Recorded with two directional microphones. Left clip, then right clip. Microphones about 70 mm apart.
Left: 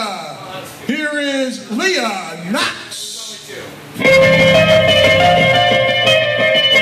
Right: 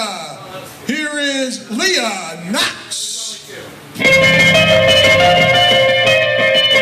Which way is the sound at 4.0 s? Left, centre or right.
Right.